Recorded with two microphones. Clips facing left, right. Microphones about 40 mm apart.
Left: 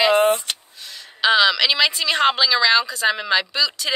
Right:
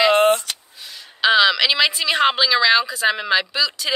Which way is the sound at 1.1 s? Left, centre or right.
Centre.